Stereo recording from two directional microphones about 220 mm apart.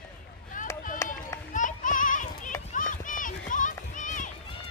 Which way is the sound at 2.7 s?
35° left (ahead or behind).